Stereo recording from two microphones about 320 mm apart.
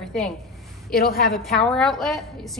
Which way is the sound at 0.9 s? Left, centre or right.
Left.